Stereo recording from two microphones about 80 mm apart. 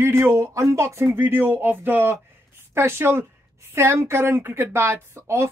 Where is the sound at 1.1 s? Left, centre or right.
Right.